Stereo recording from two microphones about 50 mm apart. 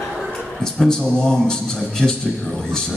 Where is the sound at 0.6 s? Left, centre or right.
Centre.